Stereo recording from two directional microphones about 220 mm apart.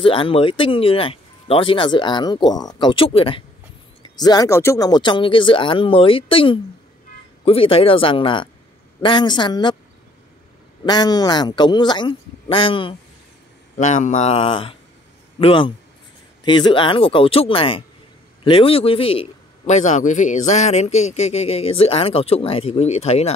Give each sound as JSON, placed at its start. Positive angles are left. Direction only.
{"t": 0.0, "sound": "a man's voice", "side_deg": 25}
{"t": 10.9, "sound": "a man's voice", "side_deg": 20}
{"t": 13.7, "sound": "a man's voice", "side_deg": 35}